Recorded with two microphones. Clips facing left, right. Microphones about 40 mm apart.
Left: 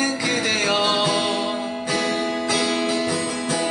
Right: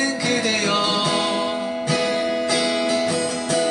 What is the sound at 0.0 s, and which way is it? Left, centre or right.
Music, centre.